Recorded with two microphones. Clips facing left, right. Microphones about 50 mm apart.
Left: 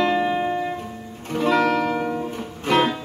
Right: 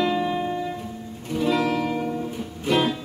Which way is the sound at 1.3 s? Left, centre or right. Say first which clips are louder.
Left 3 dB; left.